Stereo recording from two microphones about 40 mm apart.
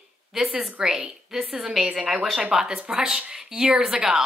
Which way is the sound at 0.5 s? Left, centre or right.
Right.